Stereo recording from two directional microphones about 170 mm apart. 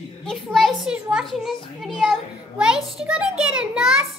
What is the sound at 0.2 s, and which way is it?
A child's voice, centre (ahead or behind).